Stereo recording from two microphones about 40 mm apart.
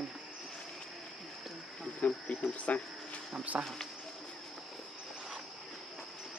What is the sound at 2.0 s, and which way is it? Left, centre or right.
Speech, left.